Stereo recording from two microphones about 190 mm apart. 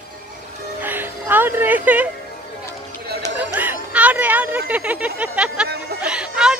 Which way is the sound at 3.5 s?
10° right (ahead or behind).